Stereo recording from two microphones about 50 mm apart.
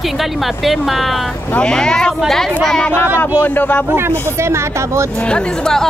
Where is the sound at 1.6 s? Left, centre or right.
Centre.